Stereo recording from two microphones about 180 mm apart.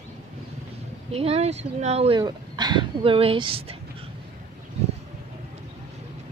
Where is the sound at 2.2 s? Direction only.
20° right (ahead or behind).